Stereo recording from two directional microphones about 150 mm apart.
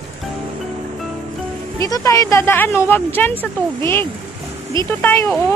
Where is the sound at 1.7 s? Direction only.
25° left (ahead or behind).